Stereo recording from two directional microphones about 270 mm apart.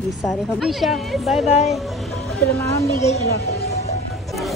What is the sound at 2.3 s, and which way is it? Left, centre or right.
Speech, centre.